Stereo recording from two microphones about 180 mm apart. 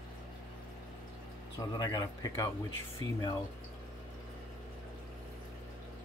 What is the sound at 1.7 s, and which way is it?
Speech, 20° left (ahead or behind).